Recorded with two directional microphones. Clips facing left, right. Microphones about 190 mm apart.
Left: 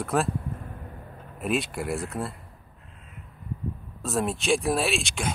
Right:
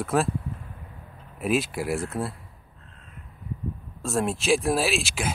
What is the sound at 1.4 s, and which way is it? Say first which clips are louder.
Speech: right 2 dB; centre (ahead or behind).